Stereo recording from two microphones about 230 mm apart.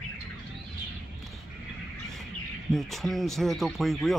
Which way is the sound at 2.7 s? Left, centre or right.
Centre.